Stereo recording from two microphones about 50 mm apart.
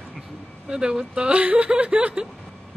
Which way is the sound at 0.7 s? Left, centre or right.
Centre.